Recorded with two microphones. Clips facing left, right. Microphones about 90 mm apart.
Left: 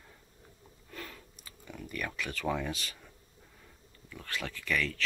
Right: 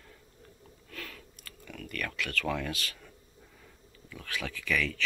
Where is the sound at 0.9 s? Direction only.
15° left (ahead or behind).